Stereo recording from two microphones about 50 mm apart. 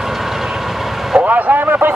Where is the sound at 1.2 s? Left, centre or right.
Right.